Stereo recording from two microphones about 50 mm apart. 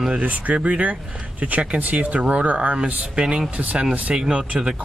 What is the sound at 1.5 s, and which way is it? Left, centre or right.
Speech, right.